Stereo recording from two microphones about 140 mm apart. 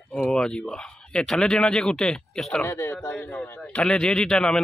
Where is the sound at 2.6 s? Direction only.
20° left (ahead or behind).